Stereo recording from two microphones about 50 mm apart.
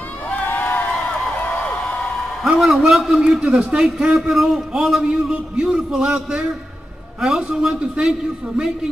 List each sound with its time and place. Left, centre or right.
0.3 s crowd: left
2.4 s speech: centre
3.2 s a man's voice: centre
4.1 s speech: centre
5.0 s a man's voice: centre